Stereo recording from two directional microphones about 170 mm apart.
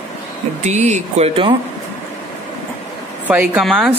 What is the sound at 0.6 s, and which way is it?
Speech, 40° right (ahead or behind).